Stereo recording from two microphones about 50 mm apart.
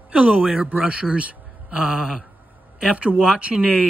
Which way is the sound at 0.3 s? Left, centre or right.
Centre.